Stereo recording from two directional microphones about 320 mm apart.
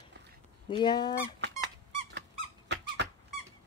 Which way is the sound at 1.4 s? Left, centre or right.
Right.